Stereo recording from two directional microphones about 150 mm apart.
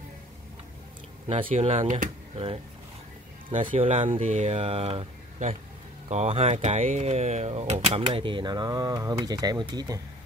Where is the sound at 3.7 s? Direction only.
40° right (ahead or behind).